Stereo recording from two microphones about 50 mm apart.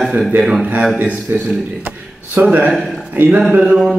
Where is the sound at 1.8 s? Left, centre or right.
Right.